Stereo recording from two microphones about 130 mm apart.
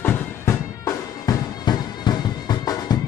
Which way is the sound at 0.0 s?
20° left (ahead or behind).